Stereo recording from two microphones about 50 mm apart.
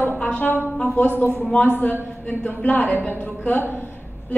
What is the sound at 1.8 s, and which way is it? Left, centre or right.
A woman's voice, left.